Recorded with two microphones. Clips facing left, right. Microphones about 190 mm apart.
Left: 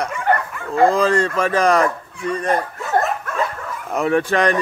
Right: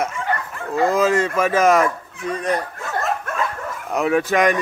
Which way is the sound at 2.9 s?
55° left (ahead or behind).